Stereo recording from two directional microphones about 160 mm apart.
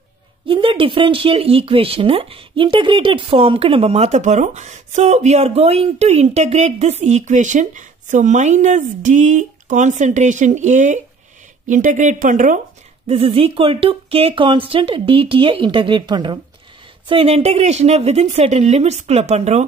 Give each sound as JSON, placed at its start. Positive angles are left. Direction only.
{"t": 0.5, "sound": "speech", "side_deg": -35}
{"t": 13.0, "sound": "speech", "side_deg": -35}
{"t": 17.1, "sound": "speech", "side_deg": -35}